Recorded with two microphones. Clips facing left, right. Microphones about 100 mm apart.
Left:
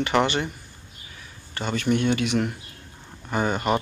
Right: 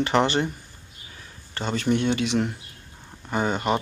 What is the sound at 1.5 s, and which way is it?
Speech, 30° right (ahead or behind).